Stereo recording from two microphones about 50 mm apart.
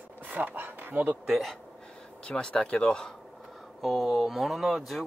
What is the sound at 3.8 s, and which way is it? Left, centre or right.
A man's voice, centre.